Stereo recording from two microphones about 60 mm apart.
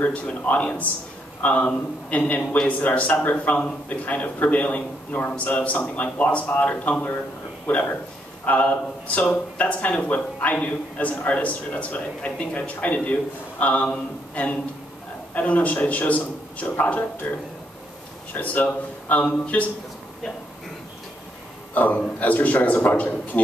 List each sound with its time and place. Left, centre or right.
0.0 s speech: left
2.4 s a man's voice: centre
2.8 s speech: left
18.3 s speech: left
21.7 s speech: left